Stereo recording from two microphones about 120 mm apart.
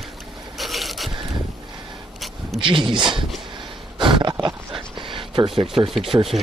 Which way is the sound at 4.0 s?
40° right (ahead or behind).